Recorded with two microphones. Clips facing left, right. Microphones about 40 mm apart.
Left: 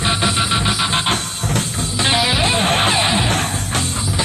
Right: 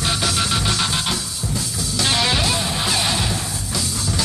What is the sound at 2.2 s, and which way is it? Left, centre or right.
Music, centre.